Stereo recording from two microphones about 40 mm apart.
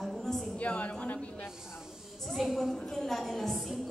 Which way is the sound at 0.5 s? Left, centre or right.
Left.